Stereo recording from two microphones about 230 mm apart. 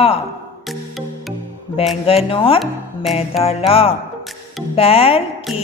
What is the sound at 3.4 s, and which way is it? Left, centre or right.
A woman's voice, left.